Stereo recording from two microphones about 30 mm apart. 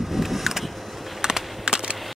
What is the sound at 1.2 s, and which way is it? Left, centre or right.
Typing, right.